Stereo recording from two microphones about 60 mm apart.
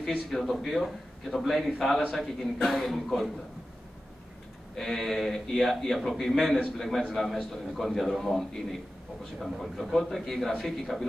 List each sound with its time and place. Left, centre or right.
0.3 s a man's voice: centre
4.7 s a man's voice: centre